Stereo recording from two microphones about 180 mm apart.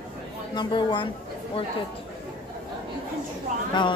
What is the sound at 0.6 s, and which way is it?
Speech, 25° left (ahead or behind).